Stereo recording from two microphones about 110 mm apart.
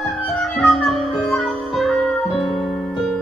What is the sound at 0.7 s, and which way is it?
Music, centre (ahead or behind).